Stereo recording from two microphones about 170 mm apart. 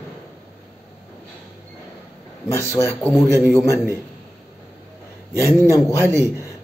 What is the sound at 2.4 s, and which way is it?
Speech, 15° left (ahead or behind).